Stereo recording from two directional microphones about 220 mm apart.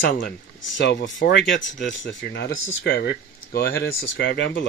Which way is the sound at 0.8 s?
55° left (ahead or behind).